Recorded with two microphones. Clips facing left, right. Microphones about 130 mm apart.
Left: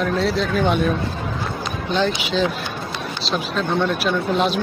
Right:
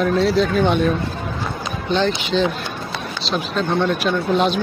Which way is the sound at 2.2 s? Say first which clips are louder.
Right 2 dB; 5° left (ahead or behind).